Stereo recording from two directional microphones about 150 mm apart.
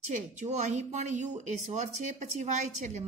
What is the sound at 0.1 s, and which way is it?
Speech, 50° right (ahead or behind).